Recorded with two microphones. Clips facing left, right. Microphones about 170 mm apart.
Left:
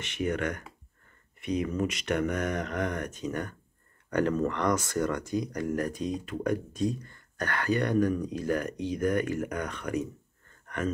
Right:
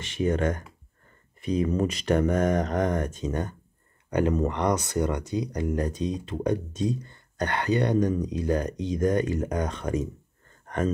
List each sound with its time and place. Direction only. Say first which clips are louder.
0.0 s speech: right 5 dB; 30° right (ahead or behind)